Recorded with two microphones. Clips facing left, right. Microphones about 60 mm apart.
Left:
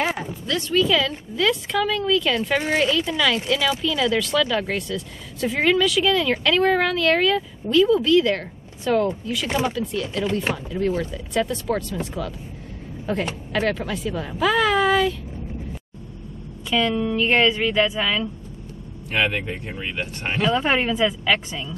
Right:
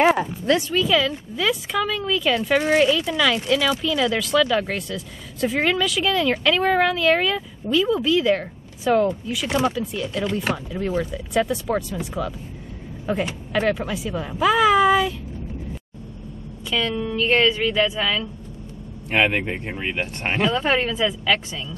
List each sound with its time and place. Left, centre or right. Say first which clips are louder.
0.0 s a sound: right 7 dB; right
0.6 s speech: even; centre
16.7 s a woman's voice: left 3 dB; centre
19.0 s speech: right 3 dB; right
20.5 s a woman's voice: left 1 dB; centre